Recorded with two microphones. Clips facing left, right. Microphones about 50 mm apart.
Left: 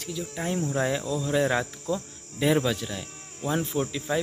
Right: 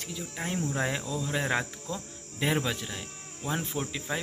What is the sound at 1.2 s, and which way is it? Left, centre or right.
Speech, right.